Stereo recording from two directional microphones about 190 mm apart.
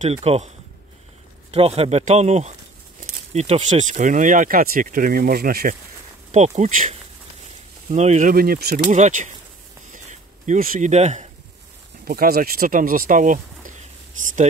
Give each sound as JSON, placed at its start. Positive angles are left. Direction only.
{"t": 0.0, "sound": "speech", "side_deg": -30}
{"t": 1.5, "sound": "speech", "side_deg": -35}
{"t": 6.3, "sound": "speech", "side_deg": -40}
{"t": 8.9, "sound": "speech", "side_deg": -40}
{"t": 9.9, "sound": "a sound", "side_deg": -40}
{"t": 12.0, "sound": "speech", "side_deg": -50}